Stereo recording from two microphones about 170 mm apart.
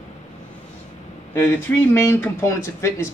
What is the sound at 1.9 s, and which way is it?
Speech, 15° left (ahead or behind).